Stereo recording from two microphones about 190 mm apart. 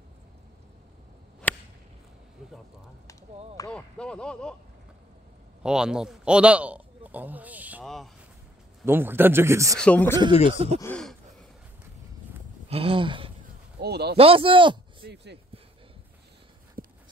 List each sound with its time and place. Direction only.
1.4 s whip: 10° left (ahead or behind)
3.7 s speech: 5° left (ahead or behind)
5.6 s speech: 5° right (ahead or behind)
8.8 s speech: 10° right (ahead or behind)
9.8 s speech: 10° left (ahead or behind)
10.5 s speech: 30° right (ahead or behind)
10.8 s speech: 5° left (ahead or behind)
12.6 s a sound: 30° right (ahead or behind)
13.7 s speech: 60° right (ahead or behind)
14.1 s speech: 30° right (ahead or behind)
16.8 s dog: 50° right (ahead or behind)